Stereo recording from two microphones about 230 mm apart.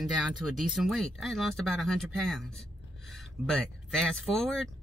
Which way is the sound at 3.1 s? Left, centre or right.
Centre.